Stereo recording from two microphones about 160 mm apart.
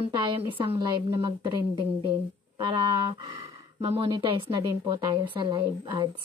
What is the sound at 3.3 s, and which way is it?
Speech, 40° right (ahead or behind).